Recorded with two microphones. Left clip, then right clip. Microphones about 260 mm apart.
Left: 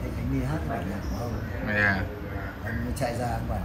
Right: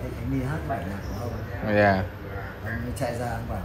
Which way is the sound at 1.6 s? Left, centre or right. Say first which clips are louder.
Right 4 dB; centre.